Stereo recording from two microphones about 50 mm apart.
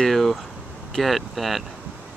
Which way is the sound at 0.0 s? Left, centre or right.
Centre.